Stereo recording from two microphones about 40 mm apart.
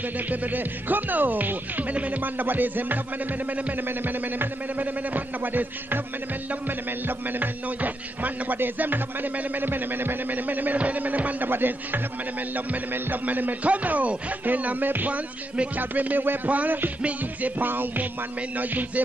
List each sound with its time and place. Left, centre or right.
0.3 s music: right
4.0 s music: right
7.1 s music: right
11.4 s speech: right
12.5 s music: right